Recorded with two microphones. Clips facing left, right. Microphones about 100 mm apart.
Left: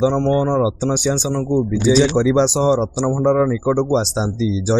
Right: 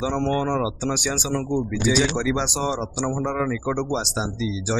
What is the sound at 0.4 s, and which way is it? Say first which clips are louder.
A man's voice: left 6 dB; 30° left (ahead or behind).